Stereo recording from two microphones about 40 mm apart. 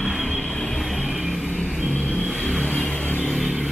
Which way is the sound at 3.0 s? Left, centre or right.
Left.